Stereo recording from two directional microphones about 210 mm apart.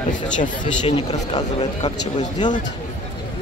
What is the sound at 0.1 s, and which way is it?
Speech, 35° left (ahead or behind).